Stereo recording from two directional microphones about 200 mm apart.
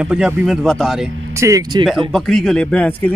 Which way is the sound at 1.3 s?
15° right (ahead or behind).